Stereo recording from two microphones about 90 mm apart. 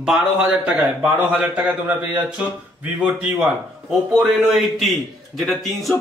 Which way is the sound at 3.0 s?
10° right (ahead or behind).